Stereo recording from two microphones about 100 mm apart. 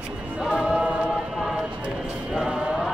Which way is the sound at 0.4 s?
5° right (ahead or behind).